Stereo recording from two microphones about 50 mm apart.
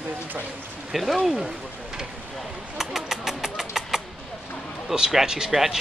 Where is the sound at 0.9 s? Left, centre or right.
Centre.